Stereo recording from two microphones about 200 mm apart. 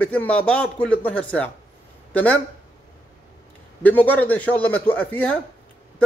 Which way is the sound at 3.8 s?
10° left (ahead or behind).